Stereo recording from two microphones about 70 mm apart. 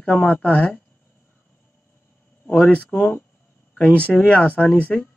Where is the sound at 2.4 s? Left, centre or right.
Centre.